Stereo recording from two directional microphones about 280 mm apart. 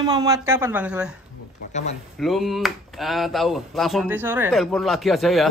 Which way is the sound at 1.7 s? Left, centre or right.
Left.